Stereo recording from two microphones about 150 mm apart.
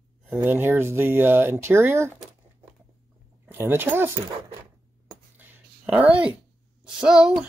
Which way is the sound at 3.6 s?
15° right (ahead or behind).